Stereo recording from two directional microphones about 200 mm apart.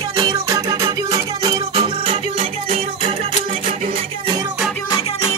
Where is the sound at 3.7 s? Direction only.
45° right (ahead or behind).